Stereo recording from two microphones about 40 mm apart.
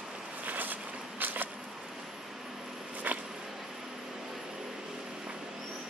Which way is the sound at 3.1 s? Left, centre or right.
Right.